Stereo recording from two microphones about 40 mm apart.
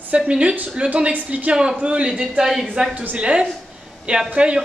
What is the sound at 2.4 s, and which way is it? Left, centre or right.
Speech, centre.